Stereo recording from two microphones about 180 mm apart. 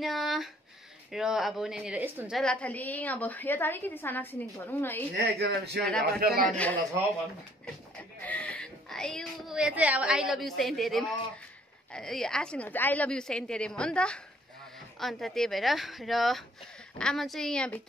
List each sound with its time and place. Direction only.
0.0 s a sound: centre (ahead or behind)
1.1 s a woman's voice: centre (ahead or behind)
5.1 s speech: 60° right (ahead or behind)
6.5 s a woman's voice: 10° left (ahead or behind)
8.2 s speech: 10° left (ahead or behind)